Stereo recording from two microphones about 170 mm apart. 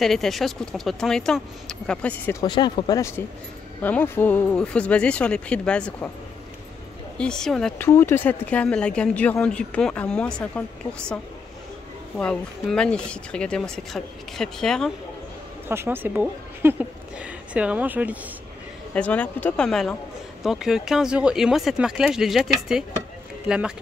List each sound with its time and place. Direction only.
0.0 s speech: centre (ahead or behind)
2.4 s speech: 25° left (ahead or behind); by 6.0 s 5° left (ahead or behind)
7.2 s speech: 5° left (ahead or behind)
7.9 s speech: 15° left (ahead or behind)
12.2 s speech: 5° left (ahead or behind)
15.7 s a woman's voice: 15° right (ahead or behind)
18.9 s speech: 10° left (ahead or behind)